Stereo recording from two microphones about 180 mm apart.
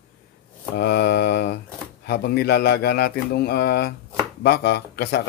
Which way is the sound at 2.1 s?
60° left (ahead or behind).